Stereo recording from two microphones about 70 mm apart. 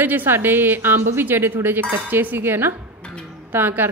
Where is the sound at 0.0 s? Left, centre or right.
Right.